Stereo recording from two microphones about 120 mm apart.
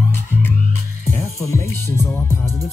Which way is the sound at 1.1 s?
25° left (ahead or behind).